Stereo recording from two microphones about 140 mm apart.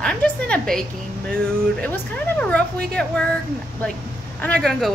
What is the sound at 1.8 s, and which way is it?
A woman's voice, 10° left (ahead or behind).